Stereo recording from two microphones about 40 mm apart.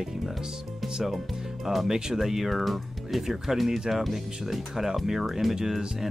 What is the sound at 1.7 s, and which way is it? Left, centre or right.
Speech, centre.